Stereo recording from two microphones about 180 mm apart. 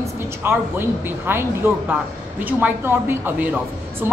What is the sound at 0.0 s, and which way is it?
A woman's voice, 15° right (ahead or behind).